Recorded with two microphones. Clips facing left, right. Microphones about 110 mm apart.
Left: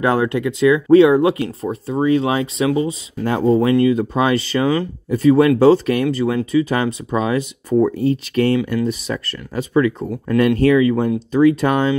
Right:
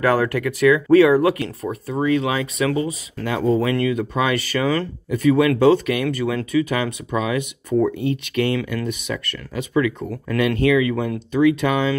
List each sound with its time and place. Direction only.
0.0 s speech: 25° left (ahead or behind)
3.5 s speech: 20° left (ahead or behind)
5.1 s speech: 35° left (ahead or behind)